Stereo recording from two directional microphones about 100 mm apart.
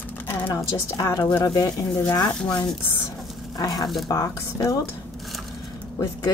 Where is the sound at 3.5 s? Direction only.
40° left (ahead or behind).